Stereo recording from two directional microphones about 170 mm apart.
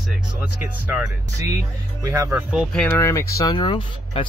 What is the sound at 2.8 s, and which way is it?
Speech, 15° left (ahead or behind).